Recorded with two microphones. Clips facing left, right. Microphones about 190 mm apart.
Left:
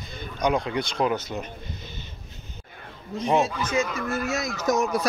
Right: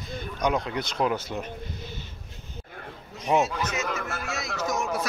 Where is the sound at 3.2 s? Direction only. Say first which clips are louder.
Left 1 dB; 5° right (ahead or behind).